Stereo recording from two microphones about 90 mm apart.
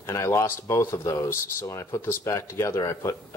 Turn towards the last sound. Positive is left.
turn(degrees=35)  # may be behind; listen again after turning